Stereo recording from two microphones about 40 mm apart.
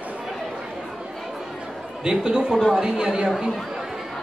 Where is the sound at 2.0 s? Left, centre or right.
Centre.